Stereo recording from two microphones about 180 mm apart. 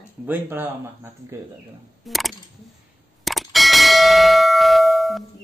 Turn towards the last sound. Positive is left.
turn(degrees=0)  # may be behind; listen again after turning